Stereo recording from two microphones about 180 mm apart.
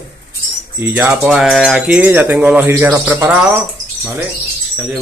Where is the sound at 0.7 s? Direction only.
10° right (ahead or behind).